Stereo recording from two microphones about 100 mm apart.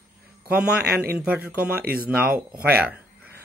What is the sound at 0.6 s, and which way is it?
Speech, 10° right (ahead or behind).